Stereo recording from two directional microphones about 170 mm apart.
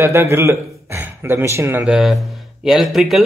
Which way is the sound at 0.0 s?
15° right (ahead or behind).